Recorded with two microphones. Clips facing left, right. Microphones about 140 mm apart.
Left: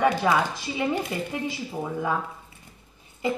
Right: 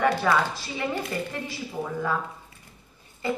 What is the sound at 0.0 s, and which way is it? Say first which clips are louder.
Speech: left 1 dB; 15° left (ahead or behind).